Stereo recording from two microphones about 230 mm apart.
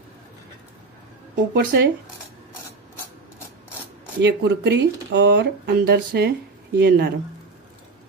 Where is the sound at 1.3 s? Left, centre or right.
Right.